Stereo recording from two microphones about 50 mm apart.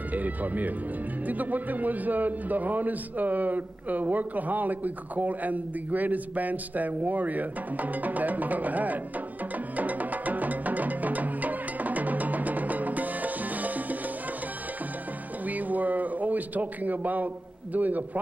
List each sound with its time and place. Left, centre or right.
0.1 s a man's voice: right
9.8 s music: right
15.4 s a sound: right
17.7 s a man's voice: right